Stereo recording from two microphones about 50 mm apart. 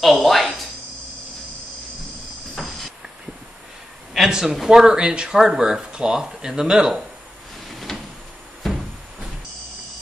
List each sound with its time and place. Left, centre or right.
0.0 s a sound: centre
2.5 s hiss: centre
4.3 s speech: centre
7.6 s drawer open or close: centre